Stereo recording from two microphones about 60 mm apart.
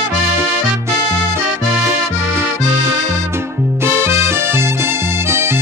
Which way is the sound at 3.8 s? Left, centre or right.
Right.